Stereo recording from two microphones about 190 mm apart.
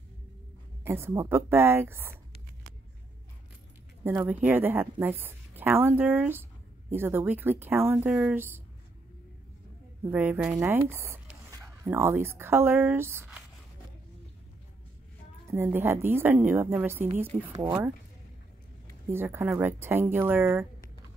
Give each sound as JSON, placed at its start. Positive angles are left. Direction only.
{"t": 0.8, "sound": "a woman's voice", "side_deg": -15}
{"t": 4.0, "sound": "a woman's voice", "side_deg": -10}
{"t": 10.0, "sound": "a woman's voice", "side_deg": -10}
{"t": 15.5, "sound": "a woman's voice", "side_deg": -10}
{"t": 19.0, "sound": "a woman's voice", "side_deg": -10}